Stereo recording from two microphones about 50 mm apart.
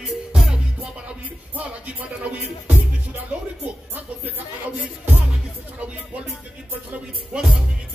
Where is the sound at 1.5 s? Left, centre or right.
Right.